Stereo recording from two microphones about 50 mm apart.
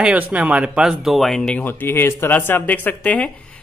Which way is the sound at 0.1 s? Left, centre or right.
Right.